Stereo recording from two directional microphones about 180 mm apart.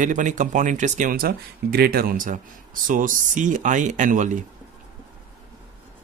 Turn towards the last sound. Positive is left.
turn(degrees=-45)  # may be behind; listen again after turning